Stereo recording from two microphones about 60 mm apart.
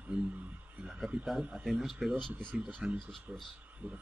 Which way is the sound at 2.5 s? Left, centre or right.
Centre.